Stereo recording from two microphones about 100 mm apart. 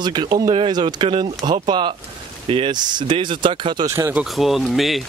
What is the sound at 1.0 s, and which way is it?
Speech, 60° right (ahead or behind).